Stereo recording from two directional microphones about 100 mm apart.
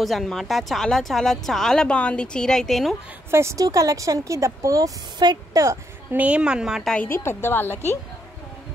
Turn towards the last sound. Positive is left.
turn(degrees=20)  # may be behind; listen again after turning